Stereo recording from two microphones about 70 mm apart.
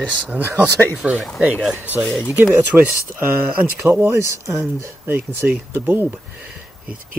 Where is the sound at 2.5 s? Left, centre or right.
Right.